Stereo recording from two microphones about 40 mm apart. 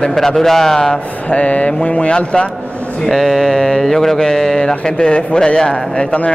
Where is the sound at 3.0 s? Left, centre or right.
Centre.